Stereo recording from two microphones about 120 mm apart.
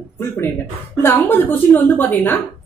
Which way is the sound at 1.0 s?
15° left (ahead or behind).